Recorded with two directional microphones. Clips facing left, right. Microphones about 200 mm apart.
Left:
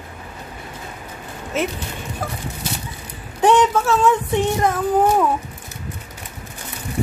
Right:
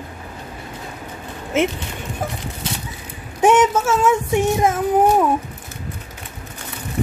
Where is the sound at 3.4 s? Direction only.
20° right (ahead or behind).